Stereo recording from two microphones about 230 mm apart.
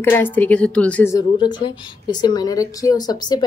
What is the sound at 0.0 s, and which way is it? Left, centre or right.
A woman's voice, centre.